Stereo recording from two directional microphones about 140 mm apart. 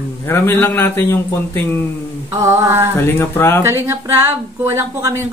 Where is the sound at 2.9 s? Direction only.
15° left (ahead or behind).